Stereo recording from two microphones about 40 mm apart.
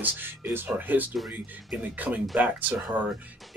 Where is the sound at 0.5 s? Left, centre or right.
Right.